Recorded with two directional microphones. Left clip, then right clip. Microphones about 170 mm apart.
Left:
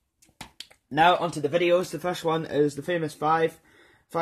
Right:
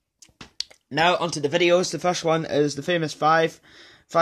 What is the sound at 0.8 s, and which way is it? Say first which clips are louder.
Speech: even; 55° right (ahead or behind).